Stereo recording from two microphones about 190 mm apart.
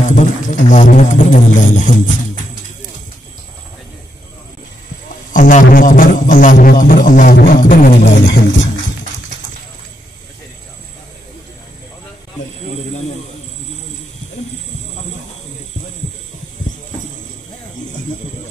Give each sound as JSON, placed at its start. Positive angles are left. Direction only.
{"t": 0.1, "sound": "speech", "side_deg": 40}
{"t": 5.3, "sound": "a man's voice", "side_deg": 45}
{"t": 8.0, "sound": "music", "side_deg": 70}